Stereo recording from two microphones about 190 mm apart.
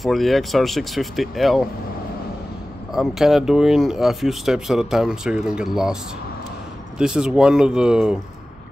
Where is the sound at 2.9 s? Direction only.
Centre (ahead or behind).